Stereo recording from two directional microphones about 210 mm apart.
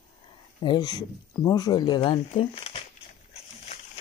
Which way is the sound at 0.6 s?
20° left (ahead or behind).